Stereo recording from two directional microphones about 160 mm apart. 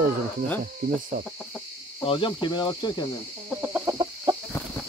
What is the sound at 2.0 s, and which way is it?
Speech, 30° left (ahead or behind).